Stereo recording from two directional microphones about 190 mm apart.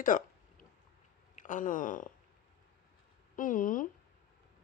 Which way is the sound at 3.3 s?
45° left (ahead or behind).